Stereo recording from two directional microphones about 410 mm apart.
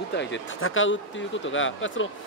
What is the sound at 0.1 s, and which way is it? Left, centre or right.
Speech, left.